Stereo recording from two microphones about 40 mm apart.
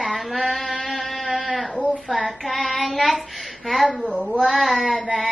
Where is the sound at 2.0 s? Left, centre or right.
Centre.